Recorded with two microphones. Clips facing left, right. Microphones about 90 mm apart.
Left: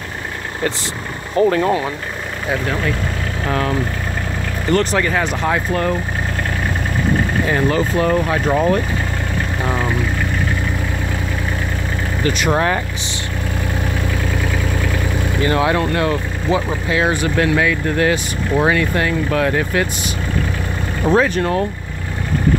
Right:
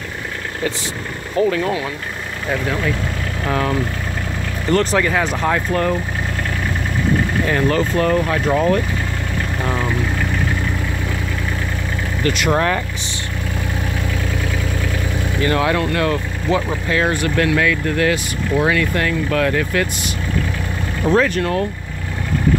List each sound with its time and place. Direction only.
1.3 s speech: 40° left (ahead or behind)
3.4 s speech: centre (ahead or behind)
7.4 s speech: 10° left (ahead or behind)
12.2 s speech: 15° left (ahead or behind)
15.4 s speech: 20° left (ahead or behind)
21.0 s speech: 20° left (ahead or behind)